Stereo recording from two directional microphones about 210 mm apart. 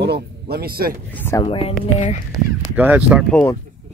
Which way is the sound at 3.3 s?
10° left (ahead or behind).